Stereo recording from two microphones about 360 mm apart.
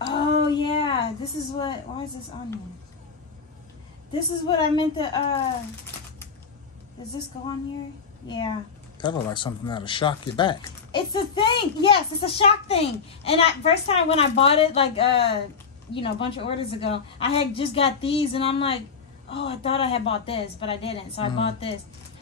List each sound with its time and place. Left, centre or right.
0.0 s a sound: centre
4.1 s speech: centre
9.0 s speech: centre